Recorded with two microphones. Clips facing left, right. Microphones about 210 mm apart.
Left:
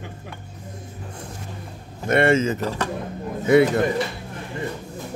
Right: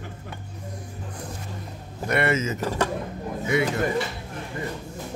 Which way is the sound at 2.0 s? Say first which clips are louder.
Left 6 dB; 25° left (ahead or behind).